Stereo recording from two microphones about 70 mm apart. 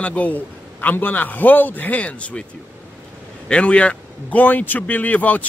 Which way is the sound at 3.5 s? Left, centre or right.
Centre.